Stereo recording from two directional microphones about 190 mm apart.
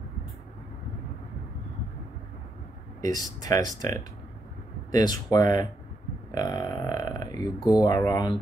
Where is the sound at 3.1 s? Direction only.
20° left (ahead or behind).